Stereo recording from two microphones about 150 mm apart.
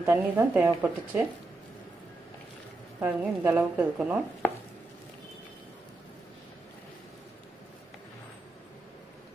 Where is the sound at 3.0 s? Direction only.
15° right (ahead or behind).